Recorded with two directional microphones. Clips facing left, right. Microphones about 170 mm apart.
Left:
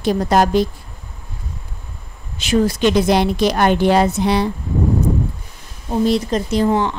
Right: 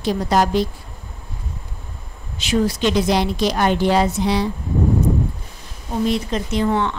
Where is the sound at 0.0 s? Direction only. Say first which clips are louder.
Left 3 dB; 50° left (ahead or behind).